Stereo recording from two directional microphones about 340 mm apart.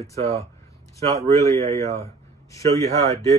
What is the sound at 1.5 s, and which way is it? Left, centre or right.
Speech, centre.